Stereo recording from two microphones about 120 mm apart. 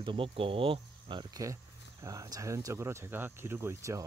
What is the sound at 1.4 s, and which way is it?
Speech, 25° right (ahead or behind).